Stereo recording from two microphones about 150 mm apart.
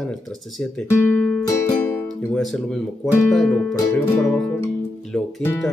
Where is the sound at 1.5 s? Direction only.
20° left (ahead or behind).